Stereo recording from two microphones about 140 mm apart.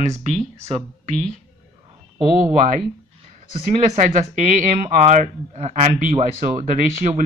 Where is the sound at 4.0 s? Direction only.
60° right (ahead or behind).